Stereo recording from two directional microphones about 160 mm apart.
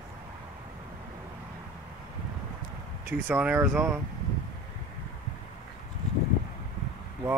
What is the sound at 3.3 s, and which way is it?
Speech, 10° right (ahead or behind).